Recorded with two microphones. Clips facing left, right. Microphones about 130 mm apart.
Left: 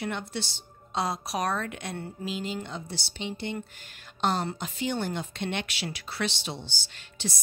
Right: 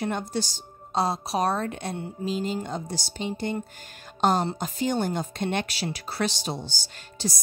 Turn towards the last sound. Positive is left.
turn(degrees=-40)  # may be behind; listen again after turning